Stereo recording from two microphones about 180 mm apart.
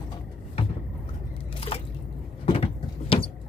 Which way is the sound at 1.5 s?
30° left (ahead or behind).